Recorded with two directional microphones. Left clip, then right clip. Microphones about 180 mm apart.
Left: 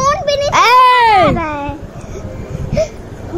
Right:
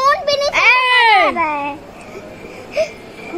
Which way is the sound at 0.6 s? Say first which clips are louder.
Left 5 dB; 90° left.